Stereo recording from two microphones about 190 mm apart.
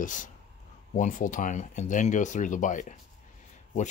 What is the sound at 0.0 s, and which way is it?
Speech, 45° left (ahead or behind).